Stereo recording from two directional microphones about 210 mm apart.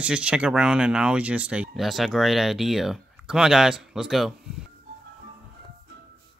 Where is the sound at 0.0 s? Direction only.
5° right (ahead or behind).